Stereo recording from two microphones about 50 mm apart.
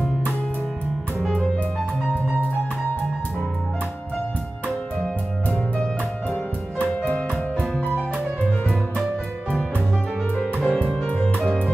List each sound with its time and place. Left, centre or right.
1.2 s music: centre
10.4 s music: left